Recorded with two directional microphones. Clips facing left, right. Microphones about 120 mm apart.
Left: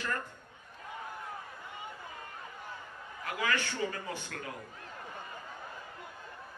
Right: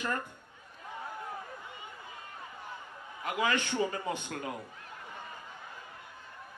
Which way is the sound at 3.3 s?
20° right (ahead or behind).